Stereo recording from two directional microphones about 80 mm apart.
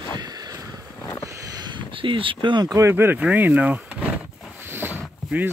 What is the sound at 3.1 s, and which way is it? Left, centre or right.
Vehicle, centre.